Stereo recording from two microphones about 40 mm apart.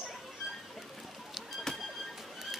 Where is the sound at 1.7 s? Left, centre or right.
Centre.